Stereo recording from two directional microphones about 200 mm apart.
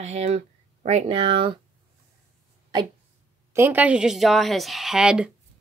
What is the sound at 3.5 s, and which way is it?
A woman's voice, 10° right (ahead or behind).